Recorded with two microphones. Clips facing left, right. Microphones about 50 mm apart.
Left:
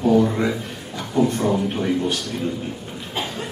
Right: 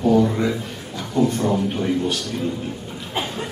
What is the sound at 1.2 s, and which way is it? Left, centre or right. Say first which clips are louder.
Speech: even; centre.